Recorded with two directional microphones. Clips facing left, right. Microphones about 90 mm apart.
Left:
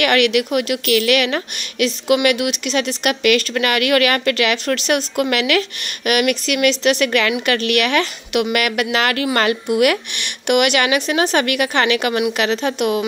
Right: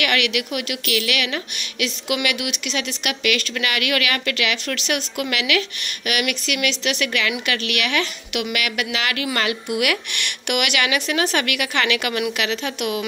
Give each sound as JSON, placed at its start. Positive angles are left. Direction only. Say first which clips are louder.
{"t": 0.0, "sound": "a woman's voice", "louder": "left 7 dB", "side_deg": 40}